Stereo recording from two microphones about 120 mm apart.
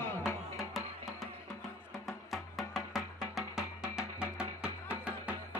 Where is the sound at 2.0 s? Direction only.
Centre (ahead or behind).